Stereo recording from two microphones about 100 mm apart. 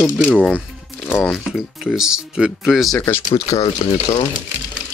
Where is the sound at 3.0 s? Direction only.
30° left (ahead or behind).